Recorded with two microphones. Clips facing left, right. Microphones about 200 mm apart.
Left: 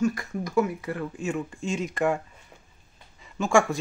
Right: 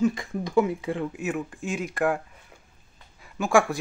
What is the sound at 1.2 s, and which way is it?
Speech, 5° right (ahead or behind).